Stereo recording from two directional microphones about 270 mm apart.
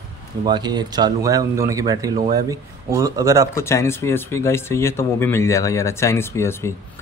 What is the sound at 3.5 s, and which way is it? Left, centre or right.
Speech, centre.